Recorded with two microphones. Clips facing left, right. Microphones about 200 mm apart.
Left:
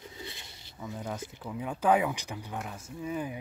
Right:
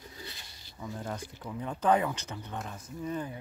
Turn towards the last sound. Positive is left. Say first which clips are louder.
# left 1 dB
turn(degrees=10)  # may be behind; listen again after turning